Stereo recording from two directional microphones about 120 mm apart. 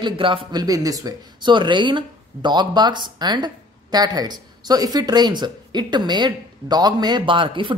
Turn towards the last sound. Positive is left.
turn(degrees=-45)  # may be behind; listen again after turning